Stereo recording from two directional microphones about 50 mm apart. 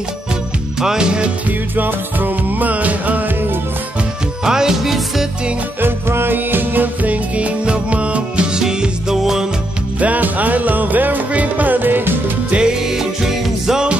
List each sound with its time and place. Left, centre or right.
0.7 s music: centre
1.8 s music: right
4.5 s music: centre
5.8 s music: right
8.5 s music: centre
9.9 s music: right
12.4 s music: centre